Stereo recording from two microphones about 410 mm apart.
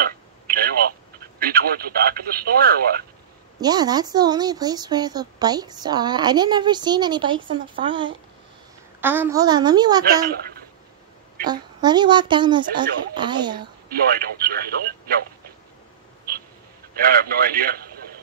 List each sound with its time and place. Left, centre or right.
0.0 s telephone: right
1.4 s speech: right
3.6 s speech: centre
10.0 s speech: right
11.4 s speech: centre
13.8 s speech: right
16.9 s speech: right